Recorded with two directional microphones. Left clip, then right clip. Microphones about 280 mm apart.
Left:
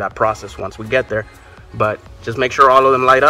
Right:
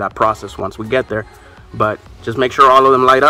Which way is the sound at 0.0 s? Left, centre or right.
Right.